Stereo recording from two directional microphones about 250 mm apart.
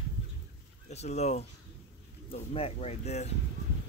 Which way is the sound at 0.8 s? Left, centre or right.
Left.